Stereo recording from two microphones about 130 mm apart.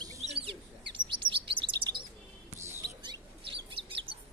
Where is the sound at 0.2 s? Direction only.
50° right (ahead or behind).